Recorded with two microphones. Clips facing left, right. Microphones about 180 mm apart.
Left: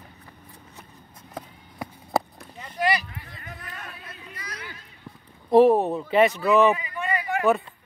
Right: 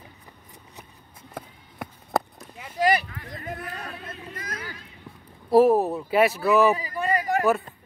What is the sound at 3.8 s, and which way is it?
Speech, 40° right (ahead or behind).